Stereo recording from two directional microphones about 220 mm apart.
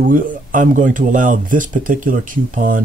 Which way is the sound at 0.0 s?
35° right (ahead or behind).